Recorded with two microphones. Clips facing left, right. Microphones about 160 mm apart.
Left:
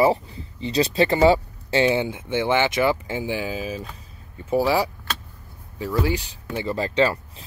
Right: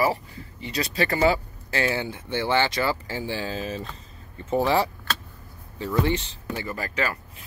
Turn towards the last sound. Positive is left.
turn(degrees=25)  # may be behind; listen again after turning